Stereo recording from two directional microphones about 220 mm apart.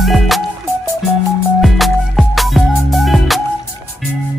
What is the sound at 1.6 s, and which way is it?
Music, centre (ahead or behind).